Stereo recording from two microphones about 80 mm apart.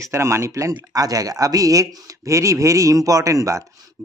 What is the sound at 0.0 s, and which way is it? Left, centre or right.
A man's voice, right.